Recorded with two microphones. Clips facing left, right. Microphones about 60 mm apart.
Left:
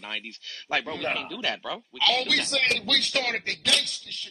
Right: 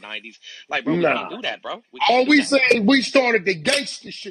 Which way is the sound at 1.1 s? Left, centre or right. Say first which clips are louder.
Right 5 dB; centre.